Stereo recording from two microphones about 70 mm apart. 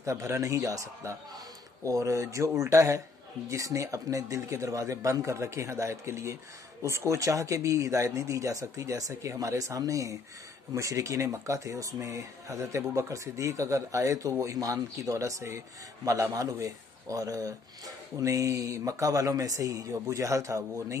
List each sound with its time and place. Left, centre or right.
0.0 s speech: right